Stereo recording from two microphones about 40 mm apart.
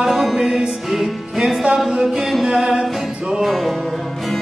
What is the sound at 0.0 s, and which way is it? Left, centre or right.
Music, centre.